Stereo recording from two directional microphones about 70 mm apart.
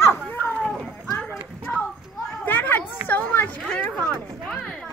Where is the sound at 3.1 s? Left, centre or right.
Left.